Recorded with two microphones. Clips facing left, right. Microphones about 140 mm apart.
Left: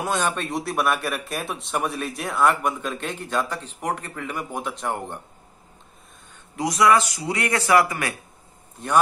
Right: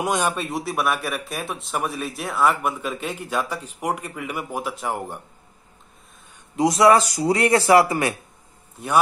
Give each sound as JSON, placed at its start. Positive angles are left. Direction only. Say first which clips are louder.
{"t": 0.0, "sound": "speech", "louder": "right 2 dB", "side_deg": -15}
{"t": 6.5, "sound": "a man's voice", "louder": "right 3 dB", "side_deg": -25}